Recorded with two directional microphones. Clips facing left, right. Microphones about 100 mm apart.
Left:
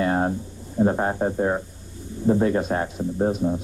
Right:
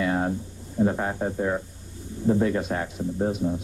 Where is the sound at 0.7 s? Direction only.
35° left (ahead or behind).